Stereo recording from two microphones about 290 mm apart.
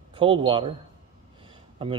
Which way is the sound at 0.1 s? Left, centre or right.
Centre.